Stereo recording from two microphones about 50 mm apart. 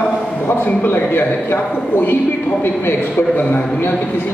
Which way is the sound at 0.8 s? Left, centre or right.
Left.